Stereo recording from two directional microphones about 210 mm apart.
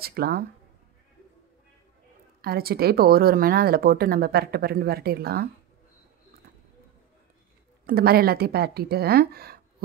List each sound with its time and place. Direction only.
0.0 s speech: 45° right (ahead or behind)
2.4 s speech: 45° right (ahead or behind)
7.8 s speech: 45° right (ahead or behind)